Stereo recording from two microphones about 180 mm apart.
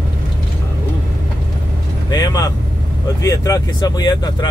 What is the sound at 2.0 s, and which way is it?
Vehicle, 20° left (ahead or behind).